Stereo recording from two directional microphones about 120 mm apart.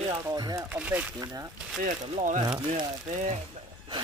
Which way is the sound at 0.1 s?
30° right (ahead or behind).